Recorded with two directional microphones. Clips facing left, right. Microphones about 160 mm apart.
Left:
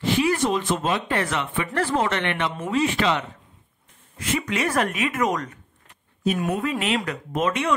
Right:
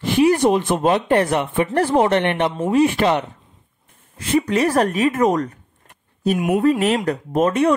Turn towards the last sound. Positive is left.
turn(degrees=-40)  # may be behind; listen again after turning